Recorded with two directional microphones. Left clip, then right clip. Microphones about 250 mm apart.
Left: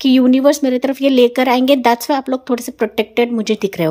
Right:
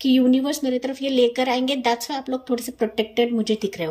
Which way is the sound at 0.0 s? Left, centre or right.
Centre.